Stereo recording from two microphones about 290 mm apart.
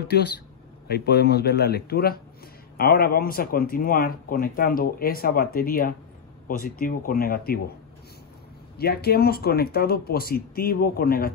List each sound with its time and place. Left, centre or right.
0.0 s a man's voice: left
8.7 s speech: left